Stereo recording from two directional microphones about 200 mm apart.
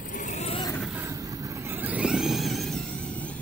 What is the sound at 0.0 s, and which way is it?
Vehicle, 40° left (ahead or behind).